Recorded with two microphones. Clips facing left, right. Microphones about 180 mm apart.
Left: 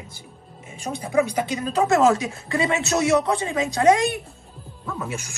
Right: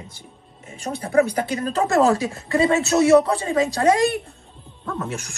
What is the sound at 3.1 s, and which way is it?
Speech, 40° right (ahead or behind).